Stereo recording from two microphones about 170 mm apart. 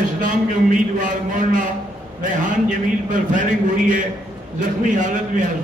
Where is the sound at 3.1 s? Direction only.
50° right (ahead or behind).